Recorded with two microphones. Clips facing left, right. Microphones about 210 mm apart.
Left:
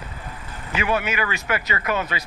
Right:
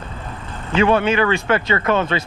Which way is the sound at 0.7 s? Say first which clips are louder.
Right 8 dB; 30° right (ahead or behind).